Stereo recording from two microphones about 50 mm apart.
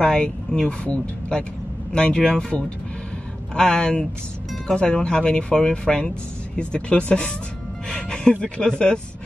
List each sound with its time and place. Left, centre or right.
0.0 s speech: centre
1.9 s speech: left